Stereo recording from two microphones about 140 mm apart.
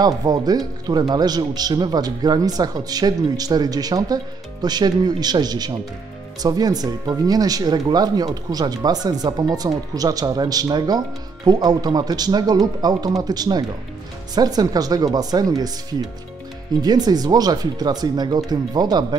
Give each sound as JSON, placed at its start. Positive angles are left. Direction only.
{"t": 0.0, "sound": "speech", "side_deg": -30}